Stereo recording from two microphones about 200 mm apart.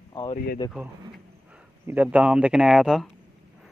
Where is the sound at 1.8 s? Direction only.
10° right (ahead or behind).